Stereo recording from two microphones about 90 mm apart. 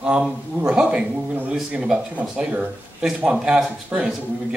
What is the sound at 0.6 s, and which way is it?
Speech, 10° right (ahead or behind).